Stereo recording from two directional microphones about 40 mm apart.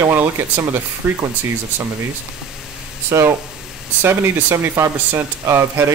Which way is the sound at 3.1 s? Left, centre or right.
Right.